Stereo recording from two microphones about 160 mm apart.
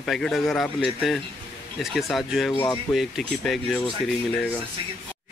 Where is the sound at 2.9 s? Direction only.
Centre (ahead or behind).